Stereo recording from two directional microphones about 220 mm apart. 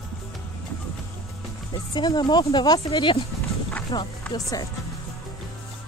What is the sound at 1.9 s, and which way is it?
Speech, 20° left (ahead or behind).